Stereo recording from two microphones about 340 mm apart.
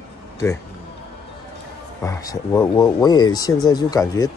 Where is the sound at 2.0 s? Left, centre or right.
Centre.